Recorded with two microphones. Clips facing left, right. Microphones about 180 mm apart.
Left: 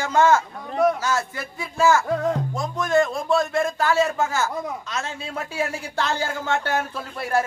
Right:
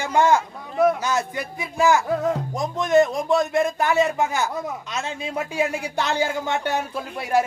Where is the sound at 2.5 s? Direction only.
20° right (ahead or behind).